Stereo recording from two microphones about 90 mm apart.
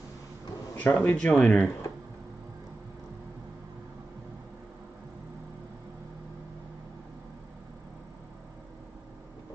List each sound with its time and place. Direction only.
0.7 s speech: 15° left (ahead or behind)